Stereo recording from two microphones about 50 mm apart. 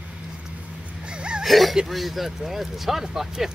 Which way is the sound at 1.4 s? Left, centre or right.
Centre.